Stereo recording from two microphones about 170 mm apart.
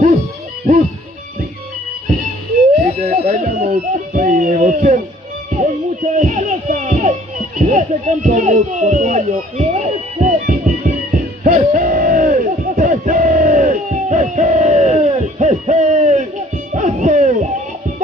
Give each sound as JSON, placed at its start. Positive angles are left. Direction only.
{"t": 3.0, "sound": "music", "side_deg": -45}
{"t": 6.1, "sound": "music", "side_deg": -45}